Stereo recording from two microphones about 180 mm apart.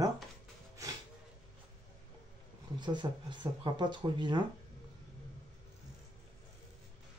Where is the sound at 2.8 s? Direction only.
25° right (ahead or behind).